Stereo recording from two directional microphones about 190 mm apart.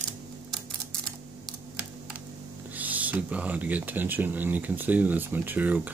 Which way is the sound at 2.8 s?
10° right (ahead or behind).